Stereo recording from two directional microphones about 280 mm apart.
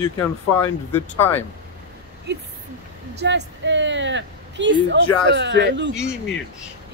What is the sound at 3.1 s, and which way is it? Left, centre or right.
A woman's voice, right.